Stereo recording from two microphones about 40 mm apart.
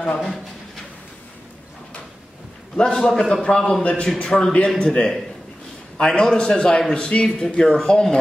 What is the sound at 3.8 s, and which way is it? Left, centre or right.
Speech, left.